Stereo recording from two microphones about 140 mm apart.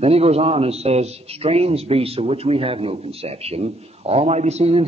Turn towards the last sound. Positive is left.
turn(degrees=-50)  # may be behind; listen again after turning